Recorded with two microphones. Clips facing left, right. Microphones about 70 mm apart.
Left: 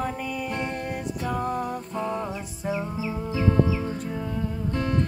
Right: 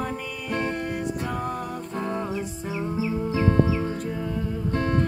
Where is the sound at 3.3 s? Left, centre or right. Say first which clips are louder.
Even; right.